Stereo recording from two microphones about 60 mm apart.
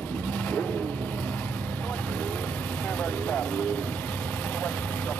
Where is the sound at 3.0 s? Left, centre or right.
Left.